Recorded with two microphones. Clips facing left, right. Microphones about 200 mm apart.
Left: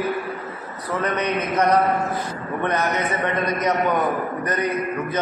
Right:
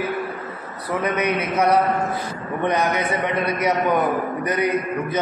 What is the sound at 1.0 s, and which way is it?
Speech, 10° right (ahead or behind).